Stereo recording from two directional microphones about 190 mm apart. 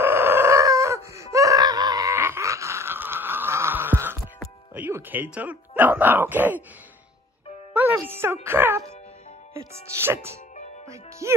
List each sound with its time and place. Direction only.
0.0 s chicken: 10° right (ahead or behind)
4.7 s speech: 10° right (ahead or behind)
7.7 s speech: 10° right (ahead or behind)
10.0 s speech: 15° right (ahead or behind)